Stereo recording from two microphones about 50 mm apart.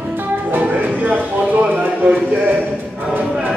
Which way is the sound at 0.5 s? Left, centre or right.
Right.